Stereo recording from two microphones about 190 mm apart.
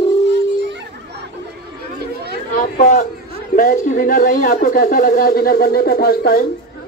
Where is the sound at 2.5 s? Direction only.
45° left (ahead or behind).